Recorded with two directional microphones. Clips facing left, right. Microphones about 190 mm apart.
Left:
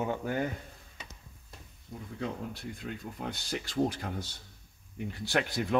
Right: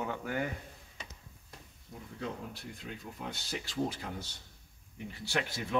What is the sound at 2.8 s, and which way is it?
Speech, 60° left (ahead or behind).